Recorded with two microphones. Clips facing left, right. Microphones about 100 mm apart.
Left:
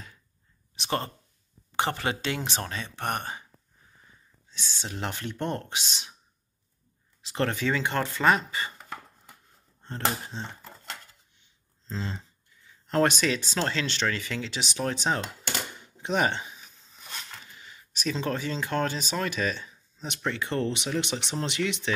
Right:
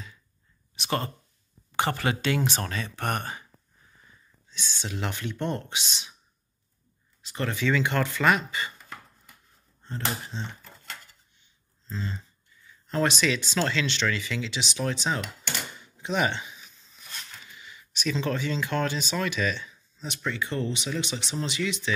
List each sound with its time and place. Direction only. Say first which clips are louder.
0.7 s a sound: right 1 dB; 30° left (ahead or behind)
1.7 s speech: right 1 dB; 20° left (ahead or behind)
4.5 s speech: right 2 dB; 35° left (ahead or behind)
7.2 s speech: left 3 dB; 80° left
7.5 s speech: right 2 dB; 40° left (ahead or behind)
10.3 s speech: right 1 dB; 45° left (ahead or behind)
11.9 s speech: left 1 dB; 90° left
12.8 s speech: left 1 dB; 60° left (ahead or behind); by 16.5 s 40° left (ahead or behind)
17.6 s speech: right 1 dB; 40° left (ahead or behind)
20.2 s speech: left 1 dB; 65° left (ahead or behind)